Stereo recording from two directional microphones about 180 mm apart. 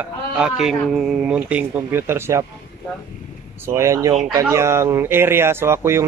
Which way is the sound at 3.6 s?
15° right (ahead or behind).